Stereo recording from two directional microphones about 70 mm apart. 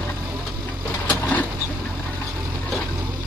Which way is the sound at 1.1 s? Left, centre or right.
Left.